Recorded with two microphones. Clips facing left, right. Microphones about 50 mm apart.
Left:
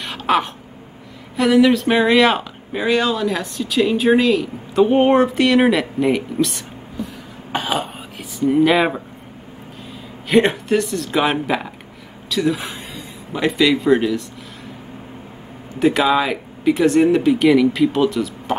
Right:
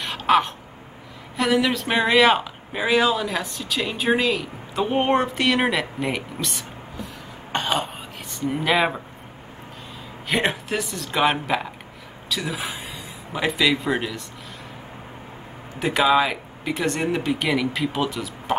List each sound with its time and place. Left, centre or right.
0.0 s a sound: centre
1.3 s speech: centre
7.5 s throat clearing: centre
10.2 s speech: centre
15.7 s speech: centre